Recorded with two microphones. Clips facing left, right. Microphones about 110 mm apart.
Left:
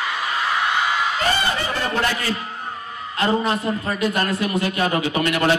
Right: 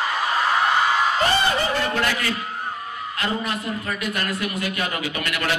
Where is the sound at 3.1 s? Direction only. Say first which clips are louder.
Left 7 dB; 30° left (ahead or behind).